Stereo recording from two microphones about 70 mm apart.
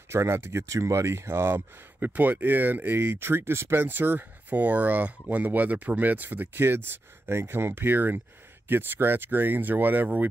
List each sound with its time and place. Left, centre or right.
0.1 s speech: right